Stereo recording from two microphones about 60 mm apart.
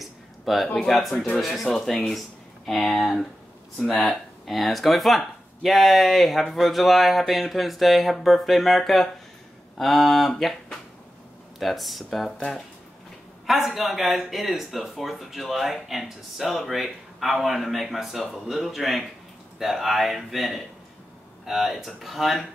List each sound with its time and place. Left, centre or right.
0.0 s a sound: centre
0.8 s speech: centre
1.1 s speech: centre
1.4 s speech: centre
13.5 s speech: centre